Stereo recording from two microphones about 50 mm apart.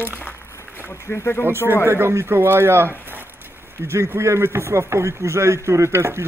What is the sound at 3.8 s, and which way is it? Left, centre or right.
Speech, right.